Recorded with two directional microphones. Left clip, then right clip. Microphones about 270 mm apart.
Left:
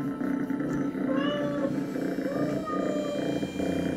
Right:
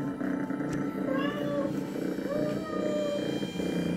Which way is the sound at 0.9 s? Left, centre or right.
Centre.